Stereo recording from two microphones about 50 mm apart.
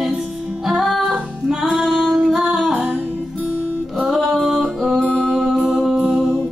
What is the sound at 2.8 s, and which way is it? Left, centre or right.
Music, right.